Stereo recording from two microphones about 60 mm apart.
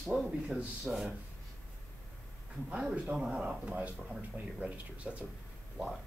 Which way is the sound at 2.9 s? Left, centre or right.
Right.